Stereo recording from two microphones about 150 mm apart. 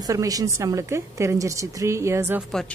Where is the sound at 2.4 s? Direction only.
5° left (ahead or behind).